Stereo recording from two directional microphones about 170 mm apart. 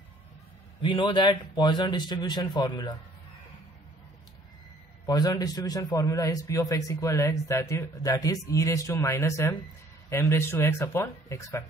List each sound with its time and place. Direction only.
0.8 s a man's voice: 30° left (ahead or behind)
5.0 s a man's voice: 25° left (ahead or behind)